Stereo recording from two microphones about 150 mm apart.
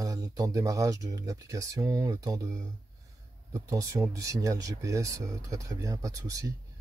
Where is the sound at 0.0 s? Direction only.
20° right (ahead or behind).